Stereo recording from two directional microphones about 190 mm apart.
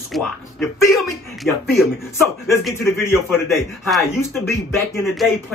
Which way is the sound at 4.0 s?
15° left (ahead or behind).